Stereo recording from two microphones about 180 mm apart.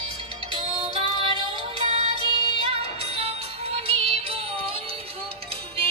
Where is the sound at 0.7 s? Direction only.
30° right (ahead or behind).